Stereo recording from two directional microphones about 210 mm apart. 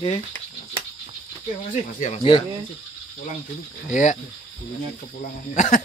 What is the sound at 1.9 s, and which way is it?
Speech, 35° left (ahead or behind).